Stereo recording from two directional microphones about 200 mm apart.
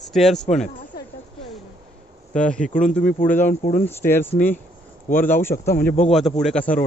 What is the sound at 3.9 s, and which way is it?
Speech, 10° left (ahead or behind).